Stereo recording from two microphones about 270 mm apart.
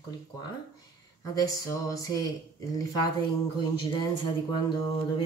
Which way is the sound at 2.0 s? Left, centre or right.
Centre.